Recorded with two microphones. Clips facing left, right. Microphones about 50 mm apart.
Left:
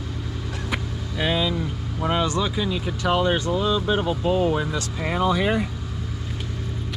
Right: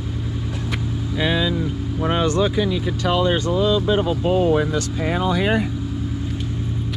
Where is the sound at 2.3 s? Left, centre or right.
Right.